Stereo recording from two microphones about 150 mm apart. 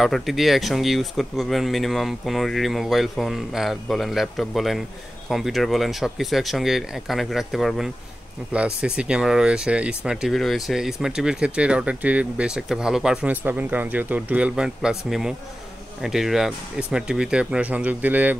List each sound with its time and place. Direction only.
0.0 s speech: centre (ahead or behind)